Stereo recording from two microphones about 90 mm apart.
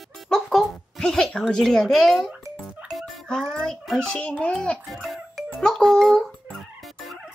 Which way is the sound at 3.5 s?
Centre (ahead or behind).